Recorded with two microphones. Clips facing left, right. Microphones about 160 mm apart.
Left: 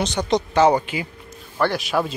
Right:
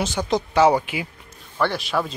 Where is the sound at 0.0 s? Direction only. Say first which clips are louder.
Left 2 dB; 5° right (ahead or behind).